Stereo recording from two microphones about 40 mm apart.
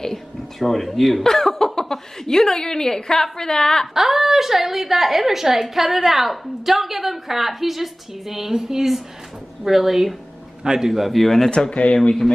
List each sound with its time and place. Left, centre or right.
0.6 s a woman's voice: centre
3.9 s a woman's voice: centre
10.9 s a woman's voice: centre
11.7 s speech: left